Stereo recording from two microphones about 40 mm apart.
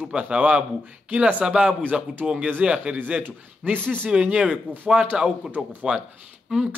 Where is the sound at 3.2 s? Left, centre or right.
Right.